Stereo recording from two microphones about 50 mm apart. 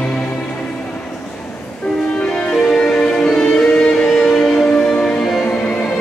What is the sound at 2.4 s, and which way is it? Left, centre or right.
Music, centre.